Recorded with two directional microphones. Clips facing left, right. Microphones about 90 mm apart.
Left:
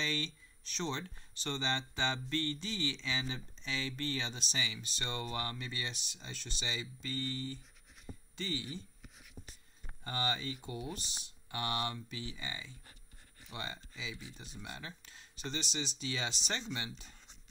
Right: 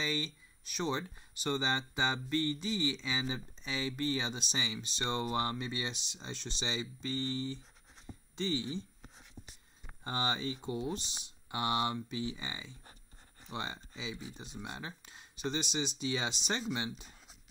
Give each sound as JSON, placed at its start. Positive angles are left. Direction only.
{"t": 0.0, "sound": "speech", "side_deg": -10}
{"t": 9.0, "sound": "a sound", "side_deg": -35}
{"t": 10.0, "sound": "speech", "side_deg": -20}